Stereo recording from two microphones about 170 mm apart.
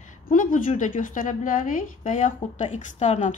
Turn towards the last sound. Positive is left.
turn(degrees=40)  # may be behind; listen again after turning